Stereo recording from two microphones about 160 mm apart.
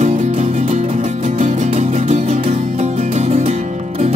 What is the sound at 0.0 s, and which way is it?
Music, 45° right (ahead or behind).